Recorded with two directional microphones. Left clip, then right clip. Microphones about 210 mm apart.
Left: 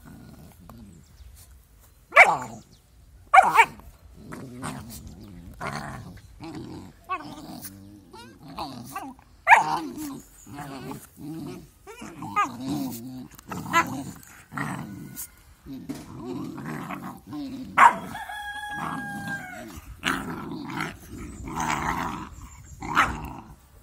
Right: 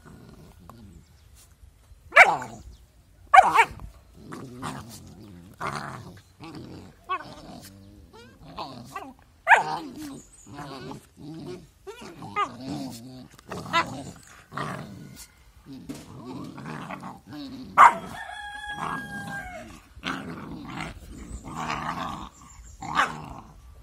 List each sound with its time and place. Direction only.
2.0 s dog: 5° right (ahead or behind)
6.4 s dog: centre (ahead or behind)
7.1 s dog: 10° right (ahead or behind)
10.6 s goat: 20° right (ahead or behind)
11.2 s roaring cats: 10° right (ahead or behind)
12.6 s dog: centre (ahead or behind)
14.3 s dog: 15° right (ahead or behind)
16.1 s a sound: 5° right (ahead or behind)
16.5 s dog: 15° right (ahead or behind)
19.1 s dog: centre (ahead or behind)